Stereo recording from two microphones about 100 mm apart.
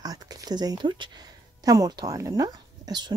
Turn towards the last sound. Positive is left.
turn(degrees=-40)  # may be behind; listen again after turning